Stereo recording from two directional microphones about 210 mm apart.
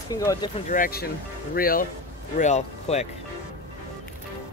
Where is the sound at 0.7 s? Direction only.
45° left (ahead or behind).